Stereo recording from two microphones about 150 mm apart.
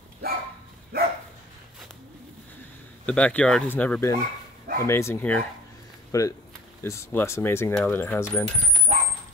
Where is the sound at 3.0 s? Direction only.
10° left (ahead or behind).